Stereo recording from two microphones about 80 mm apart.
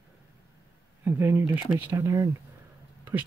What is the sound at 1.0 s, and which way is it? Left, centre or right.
Speech, right.